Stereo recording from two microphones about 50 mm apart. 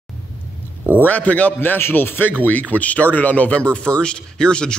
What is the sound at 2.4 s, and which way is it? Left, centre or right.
A man's voice, left.